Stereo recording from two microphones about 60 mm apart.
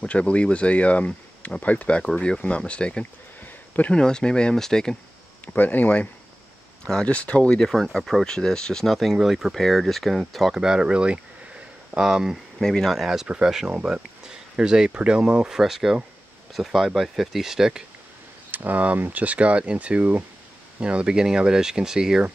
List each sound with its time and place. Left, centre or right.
0.0 s speech: centre
5.6 s speech: left
6.9 s speech: centre
7.9 s speech: centre
10.5 s speech: centre
12.6 s speech: centre
18.5 s speech: right
20.8 s speech: centre